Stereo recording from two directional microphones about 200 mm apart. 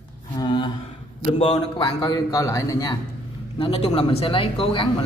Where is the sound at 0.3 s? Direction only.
25° left (ahead or behind).